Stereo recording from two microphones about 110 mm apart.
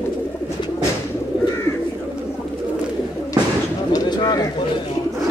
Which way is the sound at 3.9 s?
40° left (ahead or behind).